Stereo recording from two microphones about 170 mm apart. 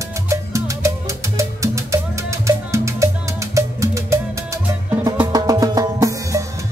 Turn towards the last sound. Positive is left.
turn(degrees=-20)  # may be behind; listen again after turning